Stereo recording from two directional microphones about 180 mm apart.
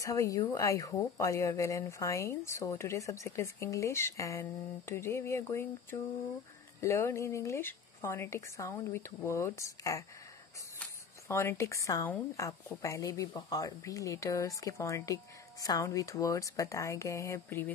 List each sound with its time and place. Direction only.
0.0 s speech: 15° left (ahead or behind)
11.2 s speech: 15° left (ahead or behind)